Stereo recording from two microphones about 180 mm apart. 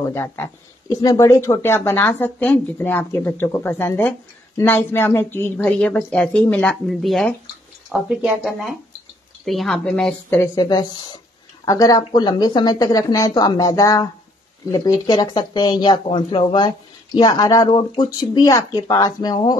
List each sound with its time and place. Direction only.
0.0 s speech: 15° left (ahead or behind)
10.4 s speech: 20° left (ahead or behind)